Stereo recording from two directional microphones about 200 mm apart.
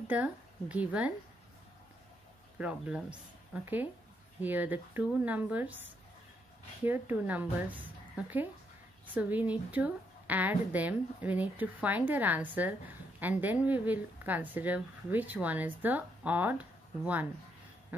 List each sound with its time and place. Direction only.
0.1 s speech: 5° right (ahead or behind)
2.6 s a woman's voice: 5° right (ahead or behind)